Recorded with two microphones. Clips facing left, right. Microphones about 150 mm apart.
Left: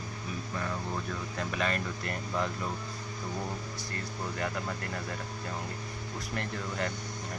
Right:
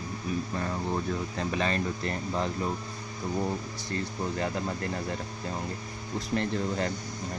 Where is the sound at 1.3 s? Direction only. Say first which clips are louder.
Right 1 dB; 30° right (ahead or behind).